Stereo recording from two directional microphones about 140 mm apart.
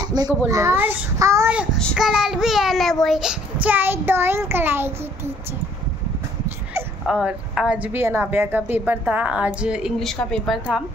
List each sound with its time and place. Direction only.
0.1 s a child's voice: 30° right (ahead or behind)
2.0 s a child's voice: 5° right (ahead or behind)
6.7 s a woman's voice: 5° right (ahead or behind)